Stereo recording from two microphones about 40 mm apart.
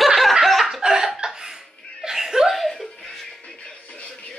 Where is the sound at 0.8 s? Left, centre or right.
Centre.